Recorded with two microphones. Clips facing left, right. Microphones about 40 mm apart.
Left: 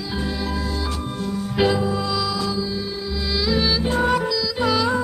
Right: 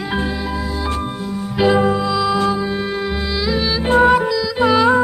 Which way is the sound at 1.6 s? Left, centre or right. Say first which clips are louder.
Right 4 dB; centre.